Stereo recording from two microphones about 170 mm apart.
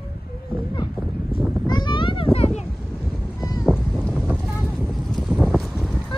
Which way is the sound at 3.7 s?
Centre (ahead or behind).